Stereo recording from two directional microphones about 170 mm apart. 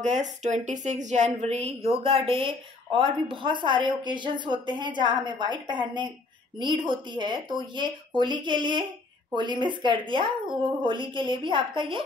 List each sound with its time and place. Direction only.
0.0 s a woman's voice: 45° right (ahead or behind)